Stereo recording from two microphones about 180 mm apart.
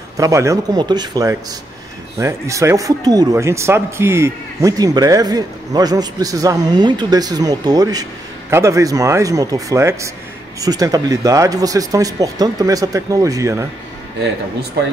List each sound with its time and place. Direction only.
0.2 s speech: 15° right (ahead or behind)